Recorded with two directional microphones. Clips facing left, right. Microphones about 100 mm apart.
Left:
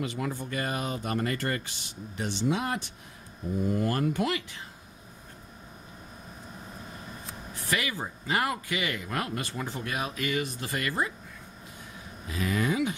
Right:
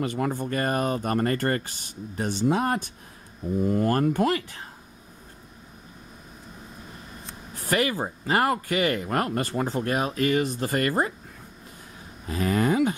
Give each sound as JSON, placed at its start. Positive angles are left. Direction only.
{"t": 0.0, "sound": "speech", "side_deg": -50}
{"t": 7.5, "sound": "speech", "side_deg": -40}
{"t": 12.3, "sound": "speech", "side_deg": -45}